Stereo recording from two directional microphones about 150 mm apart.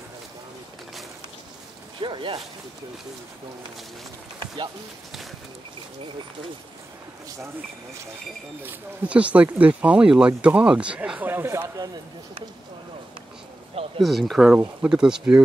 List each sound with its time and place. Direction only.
2.0 s speech: 35° right (ahead or behind)
8.6 s speech: 10° right (ahead or behind)
14.0 s speech: centre (ahead or behind)